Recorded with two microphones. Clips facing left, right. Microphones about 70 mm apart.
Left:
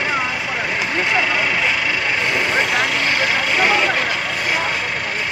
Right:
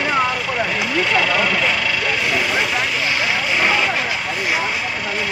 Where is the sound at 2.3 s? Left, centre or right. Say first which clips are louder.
Left 2 dB; left.